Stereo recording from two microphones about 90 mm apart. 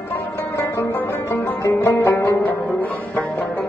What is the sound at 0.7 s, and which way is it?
Music, 25° left (ahead or behind).